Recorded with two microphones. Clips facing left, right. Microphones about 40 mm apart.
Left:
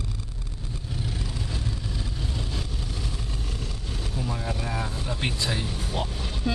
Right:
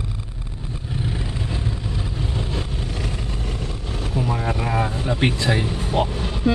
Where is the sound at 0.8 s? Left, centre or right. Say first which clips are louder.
Right 6 dB; right.